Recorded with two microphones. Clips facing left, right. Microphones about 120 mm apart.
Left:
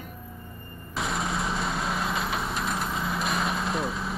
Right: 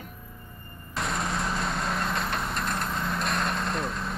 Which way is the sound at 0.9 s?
Centre (ahead or behind).